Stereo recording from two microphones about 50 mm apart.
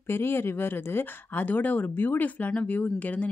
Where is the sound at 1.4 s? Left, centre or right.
Left.